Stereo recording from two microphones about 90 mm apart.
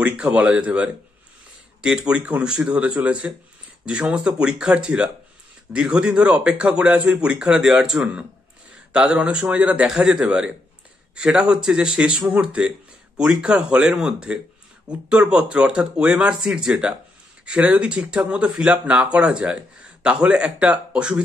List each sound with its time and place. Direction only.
0.0 s speech: 10° right (ahead or behind)